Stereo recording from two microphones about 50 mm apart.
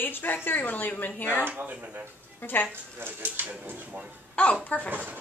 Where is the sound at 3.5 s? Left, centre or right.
Right.